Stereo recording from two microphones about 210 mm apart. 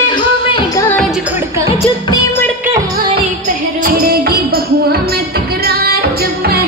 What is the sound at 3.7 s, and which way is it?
Music, 45° right (ahead or behind).